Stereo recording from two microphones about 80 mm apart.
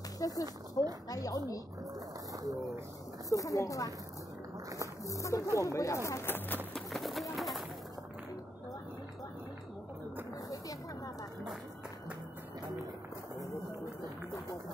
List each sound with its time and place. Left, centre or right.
0.2 s speech: left
3.3 s speech: left
5.0 s speech: left
6.9 s a sound: centre